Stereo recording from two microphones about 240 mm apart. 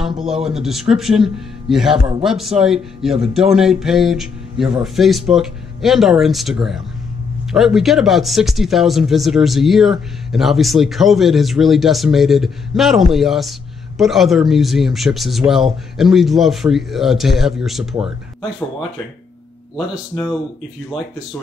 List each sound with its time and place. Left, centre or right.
0.2 s speech: centre